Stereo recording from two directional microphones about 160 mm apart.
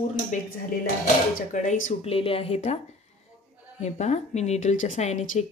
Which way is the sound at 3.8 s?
45° left (ahead or behind).